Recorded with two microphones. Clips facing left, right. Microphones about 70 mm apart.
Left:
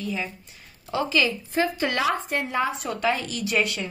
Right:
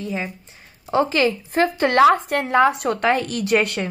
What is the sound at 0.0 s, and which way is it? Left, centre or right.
A woman's voice, right.